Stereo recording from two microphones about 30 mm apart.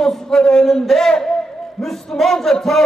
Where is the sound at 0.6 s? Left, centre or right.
Centre.